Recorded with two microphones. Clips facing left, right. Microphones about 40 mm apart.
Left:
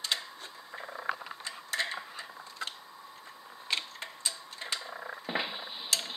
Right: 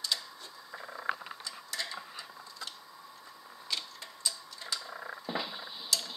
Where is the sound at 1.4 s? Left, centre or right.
Left.